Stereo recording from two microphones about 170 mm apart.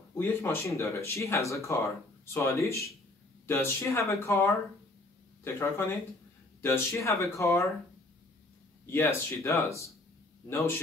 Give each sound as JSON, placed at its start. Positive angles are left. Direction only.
{"t": 0.1, "sound": "speech", "side_deg": 15}
{"t": 8.9, "sound": "speech", "side_deg": 15}